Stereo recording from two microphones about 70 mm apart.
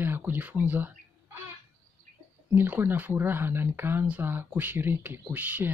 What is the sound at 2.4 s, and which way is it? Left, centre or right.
Speech, right.